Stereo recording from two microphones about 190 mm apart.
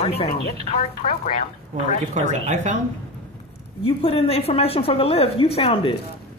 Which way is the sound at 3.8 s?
30° left (ahead or behind).